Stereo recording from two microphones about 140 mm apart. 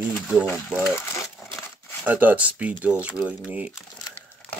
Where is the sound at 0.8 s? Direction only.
15° left (ahead or behind).